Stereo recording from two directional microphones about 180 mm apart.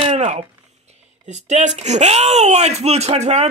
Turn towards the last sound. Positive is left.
turn(degrees=-40)  # may be behind; listen again after turning